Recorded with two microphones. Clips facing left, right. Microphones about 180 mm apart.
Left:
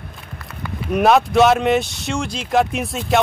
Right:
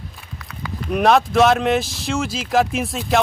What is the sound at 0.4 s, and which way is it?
Speech, centre (ahead or behind).